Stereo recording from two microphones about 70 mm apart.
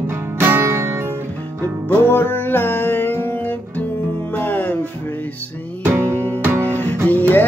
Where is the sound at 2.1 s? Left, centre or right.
Left.